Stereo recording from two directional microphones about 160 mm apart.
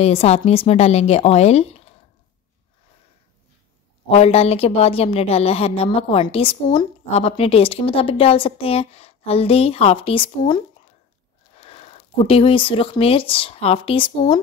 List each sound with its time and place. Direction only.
0.0 s a woman's voice: 40° left (ahead or behind)
4.1 s a woman's voice: 40° left (ahead or behind)